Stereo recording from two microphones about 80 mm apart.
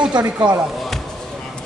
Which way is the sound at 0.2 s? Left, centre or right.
Right.